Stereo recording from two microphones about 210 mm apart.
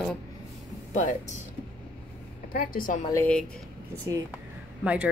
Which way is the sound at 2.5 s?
40° left (ahead or behind).